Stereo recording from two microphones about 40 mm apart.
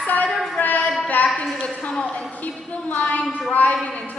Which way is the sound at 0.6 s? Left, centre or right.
Left.